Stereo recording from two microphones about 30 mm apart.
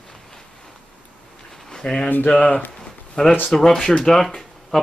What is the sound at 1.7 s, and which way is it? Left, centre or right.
Speech, left.